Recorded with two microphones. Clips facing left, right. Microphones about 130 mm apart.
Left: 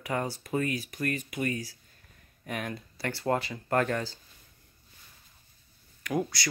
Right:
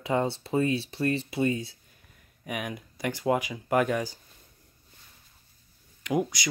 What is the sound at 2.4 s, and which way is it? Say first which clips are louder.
Speech: right 1 dB; 10° right (ahead or behind).